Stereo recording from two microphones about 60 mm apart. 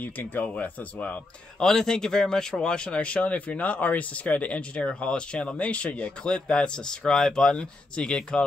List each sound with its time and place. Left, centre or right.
0.0 s speech: left
1.6 s speech: centre